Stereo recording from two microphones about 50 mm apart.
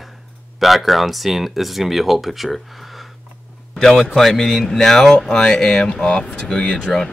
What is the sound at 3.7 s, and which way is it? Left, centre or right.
Speech, centre.